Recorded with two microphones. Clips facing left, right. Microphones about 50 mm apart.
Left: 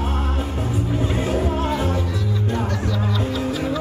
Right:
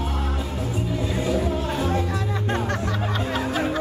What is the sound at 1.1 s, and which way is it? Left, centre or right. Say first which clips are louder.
Music: even; left.